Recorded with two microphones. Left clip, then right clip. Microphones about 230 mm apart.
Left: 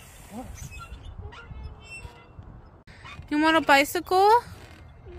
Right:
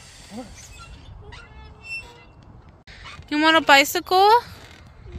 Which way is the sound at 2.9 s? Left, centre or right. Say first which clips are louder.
Right 3 dB; centre.